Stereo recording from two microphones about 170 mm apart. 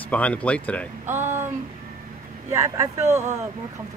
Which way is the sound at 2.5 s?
15° right (ahead or behind).